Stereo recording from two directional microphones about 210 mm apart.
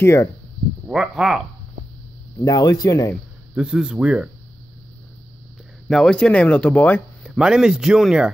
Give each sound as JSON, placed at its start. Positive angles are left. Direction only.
{"t": 0.0, "sound": "speech", "side_deg": 15}
{"t": 0.8, "sound": "speech", "side_deg": -5}
{"t": 2.4, "sound": "speech", "side_deg": 15}
{"t": 3.5, "sound": "speech", "side_deg": -5}
{"t": 5.9, "sound": "speech", "side_deg": 0}